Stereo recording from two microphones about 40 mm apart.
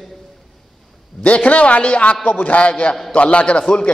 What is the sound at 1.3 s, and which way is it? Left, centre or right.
A man's voice, left.